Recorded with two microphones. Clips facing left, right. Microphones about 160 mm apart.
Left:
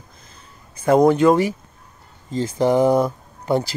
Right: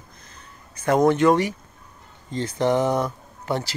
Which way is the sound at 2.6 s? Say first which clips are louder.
Left 5 dB; 10° left (ahead or behind).